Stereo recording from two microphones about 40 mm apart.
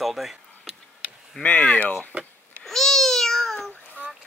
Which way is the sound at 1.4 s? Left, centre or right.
Centre.